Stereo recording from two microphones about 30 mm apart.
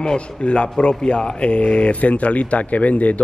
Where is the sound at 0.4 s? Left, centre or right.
Left.